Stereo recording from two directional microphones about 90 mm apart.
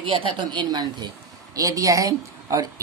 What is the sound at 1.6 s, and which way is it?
A woman's voice, 40° right (ahead or behind).